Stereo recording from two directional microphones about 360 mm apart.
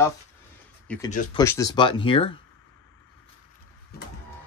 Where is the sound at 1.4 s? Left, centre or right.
Centre.